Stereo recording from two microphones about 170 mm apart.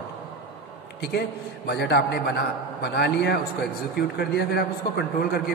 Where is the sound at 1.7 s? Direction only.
75° left (ahead or behind).